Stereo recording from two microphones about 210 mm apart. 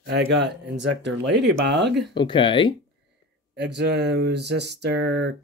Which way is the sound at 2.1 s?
25° left (ahead or behind).